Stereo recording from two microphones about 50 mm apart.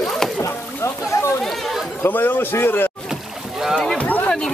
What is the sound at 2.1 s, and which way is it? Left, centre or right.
Speech, left.